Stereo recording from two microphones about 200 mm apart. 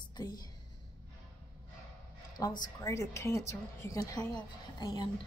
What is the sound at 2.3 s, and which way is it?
A woman's voice, 20° left (ahead or behind).